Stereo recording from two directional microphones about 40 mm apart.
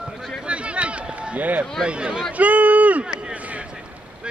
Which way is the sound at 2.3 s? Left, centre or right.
Right.